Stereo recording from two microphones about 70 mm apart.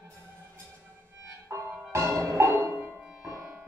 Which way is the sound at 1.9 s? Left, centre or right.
Right.